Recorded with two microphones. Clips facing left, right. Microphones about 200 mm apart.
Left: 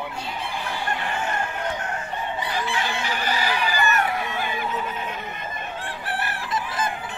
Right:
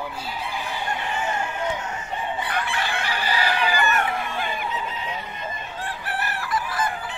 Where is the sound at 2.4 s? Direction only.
55° right (ahead or behind).